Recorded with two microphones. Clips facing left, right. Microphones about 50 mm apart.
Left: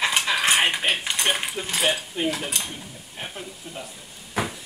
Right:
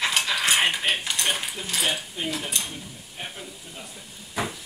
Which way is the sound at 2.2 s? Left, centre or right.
Left.